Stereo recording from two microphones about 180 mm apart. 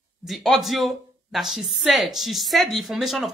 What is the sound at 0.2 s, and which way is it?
Speech, centre (ahead or behind).